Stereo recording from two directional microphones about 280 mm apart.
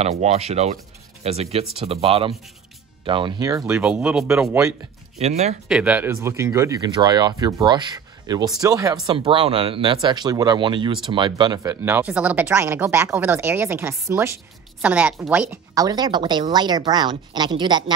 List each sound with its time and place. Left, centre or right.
0.0 s speech: right; by 4.7 s centre
5.2 s speech: right
5.7 s speech: centre